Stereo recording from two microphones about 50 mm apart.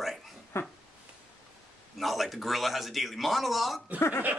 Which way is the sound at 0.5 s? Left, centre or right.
Left.